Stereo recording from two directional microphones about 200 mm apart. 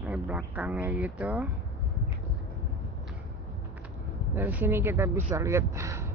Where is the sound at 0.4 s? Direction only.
10° right (ahead or behind).